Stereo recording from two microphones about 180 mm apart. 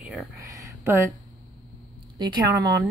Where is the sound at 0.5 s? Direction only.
15° right (ahead or behind).